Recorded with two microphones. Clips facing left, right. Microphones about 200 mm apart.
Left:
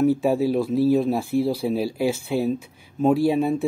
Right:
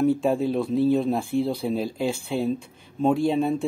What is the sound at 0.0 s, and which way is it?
Speech, 5° left (ahead or behind).